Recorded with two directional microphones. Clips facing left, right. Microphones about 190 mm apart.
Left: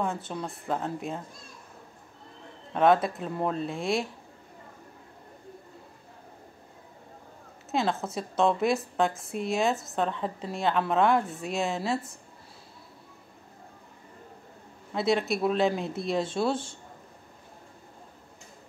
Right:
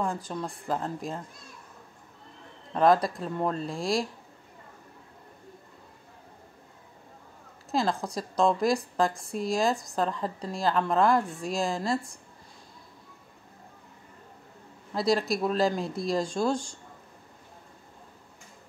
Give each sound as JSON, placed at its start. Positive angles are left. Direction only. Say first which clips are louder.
{"t": 0.0, "sound": "a woman's voice", "louder": "even", "side_deg": 0}
{"t": 2.7, "sound": "a woman's voice", "louder": "even", "side_deg": 0}
{"t": 7.7, "sound": "a woman's voice", "louder": "even", "side_deg": 0}
{"t": 15.0, "sound": "a woman's voice", "louder": "even", "side_deg": 0}